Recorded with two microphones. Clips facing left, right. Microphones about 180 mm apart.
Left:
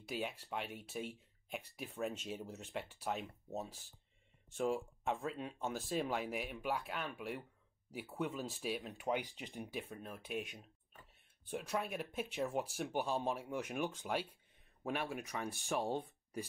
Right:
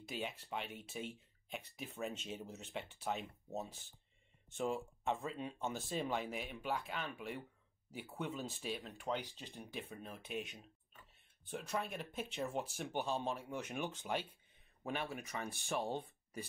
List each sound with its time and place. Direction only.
0.1 s speech: 5° left (ahead or behind)
9.0 s speech: 15° left (ahead or behind)
9.7 s speech: 5° left (ahead or behind)